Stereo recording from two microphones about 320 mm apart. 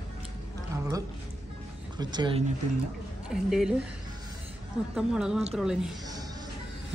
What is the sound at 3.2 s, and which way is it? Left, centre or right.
Speech, centre.